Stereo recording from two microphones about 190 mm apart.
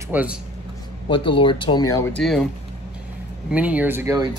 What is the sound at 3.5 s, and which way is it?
Speech, 5° right (ahead or behind).